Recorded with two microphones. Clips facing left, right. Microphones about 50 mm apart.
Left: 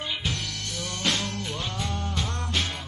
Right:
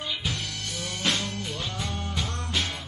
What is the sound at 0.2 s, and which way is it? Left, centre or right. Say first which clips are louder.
Music: even; centre.